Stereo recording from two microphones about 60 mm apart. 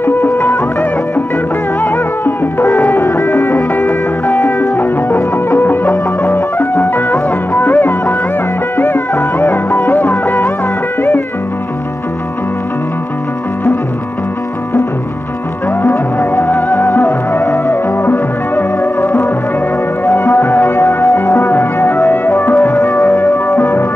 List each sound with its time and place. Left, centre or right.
0.0 s music: left
3.1 s music: left
6.9 s music: left
15.8 s music: left
20.3 s music: left
22.6 s music: left
22.8 s music: left